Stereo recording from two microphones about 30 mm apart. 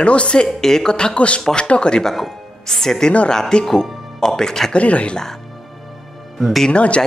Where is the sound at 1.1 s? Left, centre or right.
Left.